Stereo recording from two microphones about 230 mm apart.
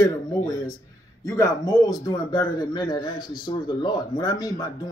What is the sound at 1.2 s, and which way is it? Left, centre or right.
Speech, centre.